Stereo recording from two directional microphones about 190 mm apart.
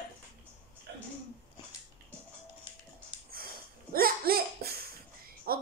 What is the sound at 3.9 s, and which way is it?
Speech, 50° right (ahead or behind).